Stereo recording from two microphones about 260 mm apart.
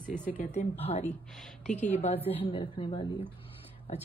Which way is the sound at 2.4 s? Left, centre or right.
Left.